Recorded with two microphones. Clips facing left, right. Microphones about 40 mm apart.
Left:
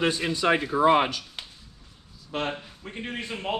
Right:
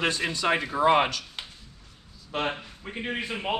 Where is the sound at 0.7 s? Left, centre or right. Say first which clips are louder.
Even; centre.